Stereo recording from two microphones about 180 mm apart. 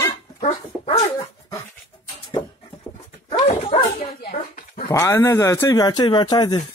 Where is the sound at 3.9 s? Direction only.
55° left (ahead or behind).